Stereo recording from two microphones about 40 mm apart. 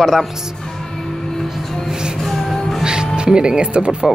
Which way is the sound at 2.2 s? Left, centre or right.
Centre.